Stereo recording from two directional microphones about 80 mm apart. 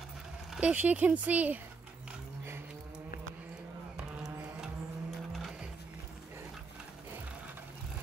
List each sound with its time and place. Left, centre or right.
0.6 s speech: centre
5.3 s printer: centre